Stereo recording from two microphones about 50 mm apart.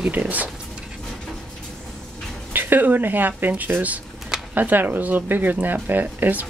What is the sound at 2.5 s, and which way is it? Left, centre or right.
Speech, right.